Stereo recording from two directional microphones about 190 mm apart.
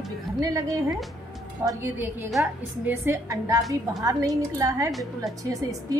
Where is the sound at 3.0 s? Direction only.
15° right (ahead or behind).